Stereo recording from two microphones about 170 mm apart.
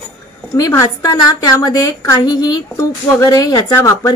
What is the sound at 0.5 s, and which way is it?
A woman's voice, 20° left (ahead or behind).